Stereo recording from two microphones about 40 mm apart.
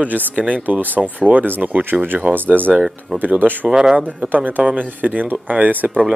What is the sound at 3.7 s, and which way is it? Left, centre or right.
Speech, centre.